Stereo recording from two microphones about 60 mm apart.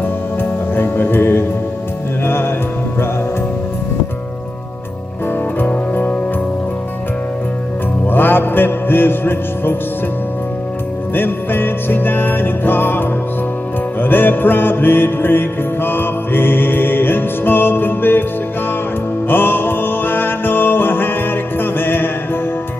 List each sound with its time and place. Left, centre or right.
0.0 s music: left
5.6 s music: left
8.1 s music: left
11.1 s music: left
19.2 s music: left